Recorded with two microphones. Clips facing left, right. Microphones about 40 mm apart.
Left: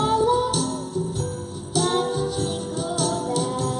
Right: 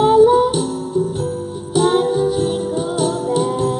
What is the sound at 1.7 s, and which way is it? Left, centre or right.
Music, right.